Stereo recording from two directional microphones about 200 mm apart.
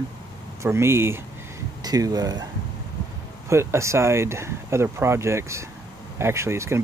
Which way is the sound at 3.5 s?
15° right (ahead or behind).